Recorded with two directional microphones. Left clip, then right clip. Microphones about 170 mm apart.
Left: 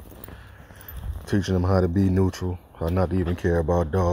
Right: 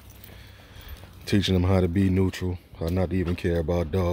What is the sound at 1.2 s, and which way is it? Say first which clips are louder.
Speech: even; 25° right (ahead or behind).